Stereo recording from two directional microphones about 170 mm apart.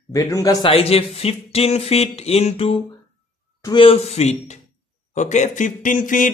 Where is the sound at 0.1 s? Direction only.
20° left (ahead or behind).